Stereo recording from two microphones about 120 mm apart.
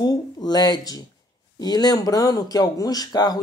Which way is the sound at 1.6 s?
35° left (ahead or behind).